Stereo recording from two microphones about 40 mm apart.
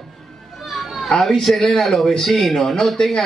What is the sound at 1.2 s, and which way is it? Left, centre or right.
A man's voice, centre.